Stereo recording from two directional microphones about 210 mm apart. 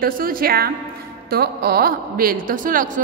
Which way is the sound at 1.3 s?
50° right (ahead or behind).